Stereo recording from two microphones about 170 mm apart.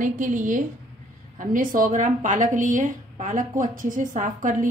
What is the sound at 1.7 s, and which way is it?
A woman's voice, 50° right (ahead or behind).